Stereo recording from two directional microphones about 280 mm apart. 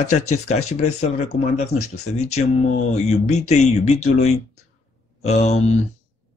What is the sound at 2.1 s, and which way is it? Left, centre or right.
Speech, left.